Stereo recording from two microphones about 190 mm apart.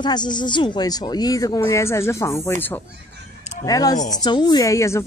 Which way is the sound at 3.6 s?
20° left (ahead or behind).